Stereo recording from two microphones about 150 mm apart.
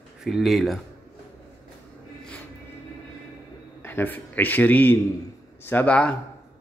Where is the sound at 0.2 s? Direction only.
Centre (ahead or behind).